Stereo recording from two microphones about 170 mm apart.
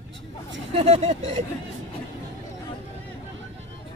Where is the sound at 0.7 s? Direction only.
40° right (ahead or behind).